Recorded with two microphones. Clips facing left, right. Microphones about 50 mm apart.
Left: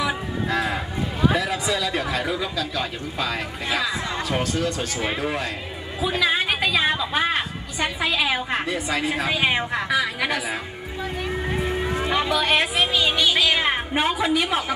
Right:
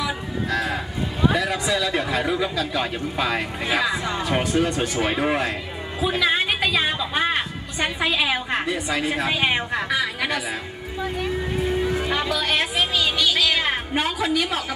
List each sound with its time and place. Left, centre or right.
0.0 s a sound: centre
1.3 s speech: centre
2.6 s speech: centre
6.0 s a woman's voice: centre
12.0 s a woman's voice: centre